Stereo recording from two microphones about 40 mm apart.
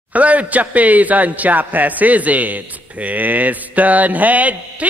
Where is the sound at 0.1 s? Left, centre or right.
Right.